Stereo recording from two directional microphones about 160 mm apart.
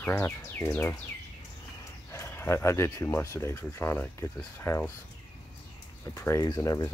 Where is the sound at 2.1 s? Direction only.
15° left (ahead or behind).